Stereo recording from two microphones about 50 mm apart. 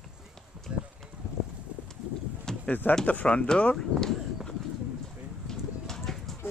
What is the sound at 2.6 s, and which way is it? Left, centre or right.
Speech, left.